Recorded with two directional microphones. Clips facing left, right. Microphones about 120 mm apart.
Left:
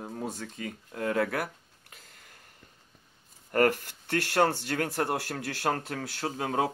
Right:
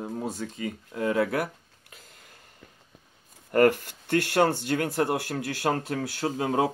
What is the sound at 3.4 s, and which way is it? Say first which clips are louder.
Speech: right 4 dB; 25° right (ahead or behind).